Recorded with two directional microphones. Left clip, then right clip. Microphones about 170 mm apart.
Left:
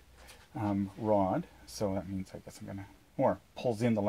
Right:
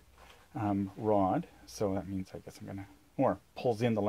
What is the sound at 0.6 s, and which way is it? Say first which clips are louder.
Speech: right 1 dB; 20° right (ahead or behind).